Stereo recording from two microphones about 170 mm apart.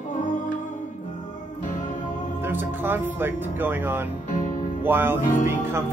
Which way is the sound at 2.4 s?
10° right (ahead or behind).